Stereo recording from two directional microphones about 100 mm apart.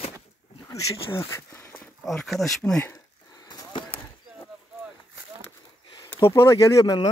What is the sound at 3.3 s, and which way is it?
Skateboard, 40° left (ahead or behind).